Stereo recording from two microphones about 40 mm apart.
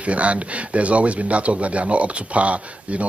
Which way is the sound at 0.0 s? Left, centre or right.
Right.